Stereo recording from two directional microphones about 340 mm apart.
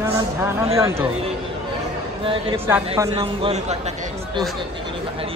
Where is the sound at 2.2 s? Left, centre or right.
Centre.